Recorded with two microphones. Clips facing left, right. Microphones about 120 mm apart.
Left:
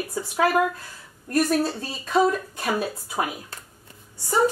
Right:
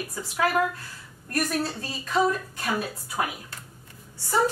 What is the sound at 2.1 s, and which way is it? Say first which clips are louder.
Speech: left 3 dB; 20° left (ahead or behind).